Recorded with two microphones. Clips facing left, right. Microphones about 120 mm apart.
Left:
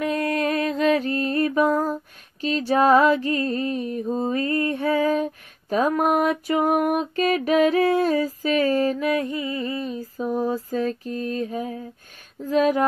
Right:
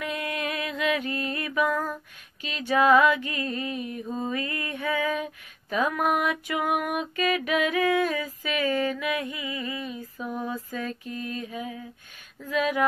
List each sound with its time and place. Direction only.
0.0 s music: 40° left (ahead or behind)